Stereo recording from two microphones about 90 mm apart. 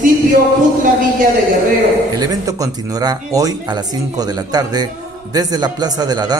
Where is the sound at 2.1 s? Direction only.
40° right (ahead or behind).